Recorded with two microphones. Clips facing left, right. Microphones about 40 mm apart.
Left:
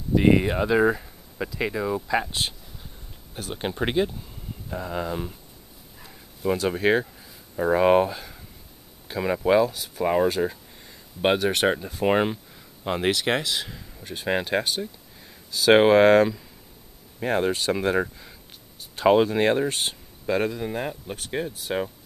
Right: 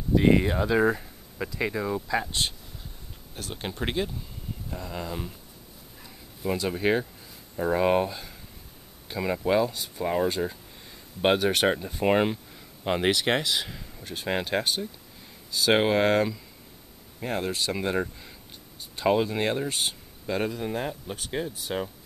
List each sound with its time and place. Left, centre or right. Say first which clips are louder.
0.2 s speech: left 3 dB; centre
5.9 s dog: left 2 dB; centre
7.5 s speech: left 4 dB; centre
10.4 s speech: left 4 dB; centre
10.9 s speech: left 1 dB; centre
19.2 s speech: left 6 dB; centre